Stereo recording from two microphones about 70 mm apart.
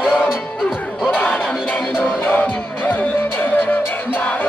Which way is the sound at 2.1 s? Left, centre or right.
Left.